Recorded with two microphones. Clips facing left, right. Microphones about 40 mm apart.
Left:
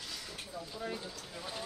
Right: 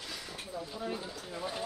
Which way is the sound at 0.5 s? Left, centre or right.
Centre.